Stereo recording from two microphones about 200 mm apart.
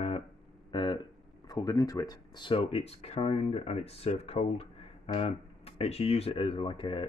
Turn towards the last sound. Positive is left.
turn(degrees=25)  # may be behind; listen again after turning